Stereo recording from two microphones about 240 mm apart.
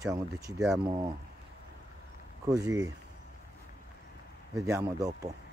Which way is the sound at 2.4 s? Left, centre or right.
Centre.